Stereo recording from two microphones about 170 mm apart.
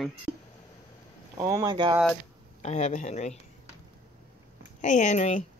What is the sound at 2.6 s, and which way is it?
Speech, 40° left (ahead or behind).